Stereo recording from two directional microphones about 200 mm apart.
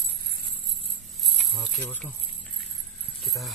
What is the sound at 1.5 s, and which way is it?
Speech, centre (ahead or behind).